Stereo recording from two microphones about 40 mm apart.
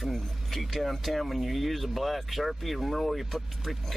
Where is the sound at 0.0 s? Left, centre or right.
Centre.